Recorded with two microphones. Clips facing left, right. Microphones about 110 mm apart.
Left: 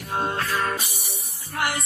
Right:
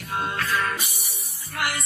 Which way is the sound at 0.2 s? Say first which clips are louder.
Left 1 dB; 30° left (ahead or behind).